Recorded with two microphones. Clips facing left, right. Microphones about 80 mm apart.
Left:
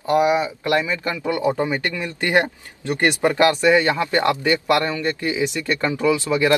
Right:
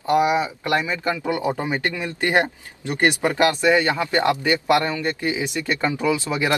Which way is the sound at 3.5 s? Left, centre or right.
Left.